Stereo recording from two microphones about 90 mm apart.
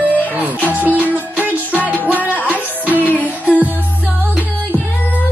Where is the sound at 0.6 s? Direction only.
20° left (ahead or behind).